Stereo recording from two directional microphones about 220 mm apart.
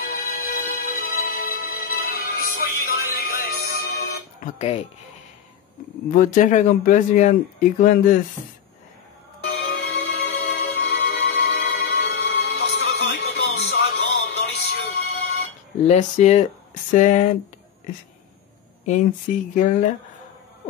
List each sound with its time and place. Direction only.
0.0 s music: 40° left (ahead or behind)
4.6 s speech: 25° left (ahead or behind)
6.1 s speech: 35° left (ahead or behind)
9.4 s music: 50° left (ahead or behind)
15.9 s speech: 30° left (ahead or behind)
18.9 s speech: 35° left (ahead or behind)